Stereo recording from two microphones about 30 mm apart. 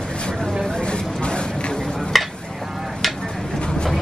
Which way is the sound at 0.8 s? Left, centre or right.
Left.